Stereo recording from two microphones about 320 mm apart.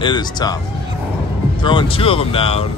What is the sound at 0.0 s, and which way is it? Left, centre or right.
Speech, centre.